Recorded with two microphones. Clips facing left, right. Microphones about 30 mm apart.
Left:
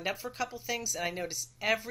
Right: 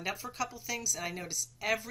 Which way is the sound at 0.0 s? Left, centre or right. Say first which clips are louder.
Left 2 dB; left.